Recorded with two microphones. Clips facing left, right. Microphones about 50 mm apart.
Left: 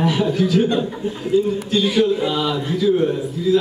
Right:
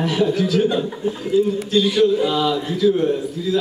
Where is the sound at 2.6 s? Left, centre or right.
Centre.